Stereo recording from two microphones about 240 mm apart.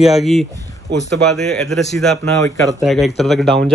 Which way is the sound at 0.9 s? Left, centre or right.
Right.